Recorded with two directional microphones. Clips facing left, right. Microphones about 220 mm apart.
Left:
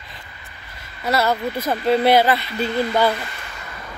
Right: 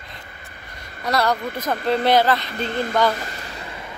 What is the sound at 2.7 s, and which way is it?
Speech, 50° right (ahead or behind).